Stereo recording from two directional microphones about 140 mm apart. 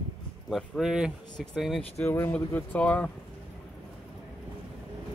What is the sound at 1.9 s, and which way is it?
Speech, 15° left (ahead or behind).